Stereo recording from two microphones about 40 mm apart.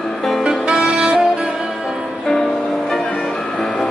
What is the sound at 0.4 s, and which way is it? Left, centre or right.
Saxophone, right.